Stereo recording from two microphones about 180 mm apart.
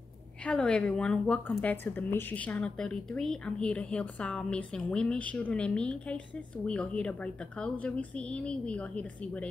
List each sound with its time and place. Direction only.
0.5 s speech: 5° left (ahead or behind)